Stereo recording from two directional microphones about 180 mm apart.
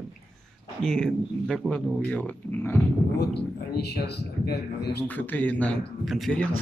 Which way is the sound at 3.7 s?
65° left (ahead or behind).